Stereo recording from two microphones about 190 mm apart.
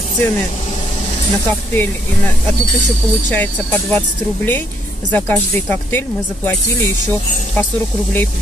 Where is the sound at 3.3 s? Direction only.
10° left (ahead or behind).